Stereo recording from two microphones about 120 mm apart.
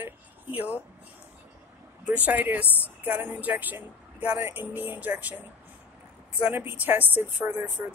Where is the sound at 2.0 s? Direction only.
15° right (ahead or behind).